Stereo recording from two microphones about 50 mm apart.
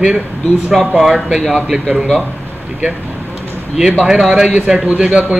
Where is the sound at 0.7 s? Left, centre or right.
Centre.